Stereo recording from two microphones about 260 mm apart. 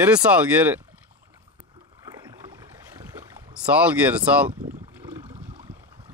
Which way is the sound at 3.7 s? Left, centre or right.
Centre.